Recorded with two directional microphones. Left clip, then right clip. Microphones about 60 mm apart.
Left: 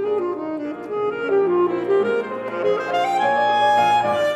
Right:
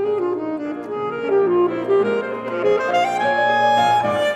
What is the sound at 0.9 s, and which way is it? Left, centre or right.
Music, centre.